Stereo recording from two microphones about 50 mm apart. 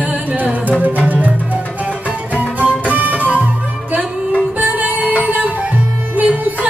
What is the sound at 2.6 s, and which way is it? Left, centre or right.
Music, right.